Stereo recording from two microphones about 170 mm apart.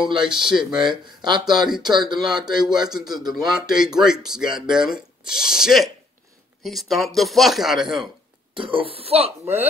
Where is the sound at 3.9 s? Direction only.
5° right (ahead or behind).